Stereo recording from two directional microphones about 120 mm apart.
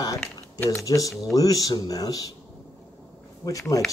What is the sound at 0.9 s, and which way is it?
Speech, 30° left (ahead or behind).